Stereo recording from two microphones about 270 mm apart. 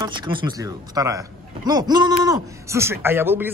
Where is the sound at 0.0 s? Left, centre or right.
Centre.